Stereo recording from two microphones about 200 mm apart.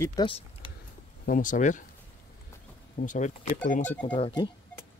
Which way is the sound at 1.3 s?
40° left (ahead or behind).